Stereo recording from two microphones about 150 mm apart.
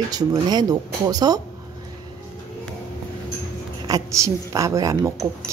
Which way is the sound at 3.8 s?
20° right (ahead or behind).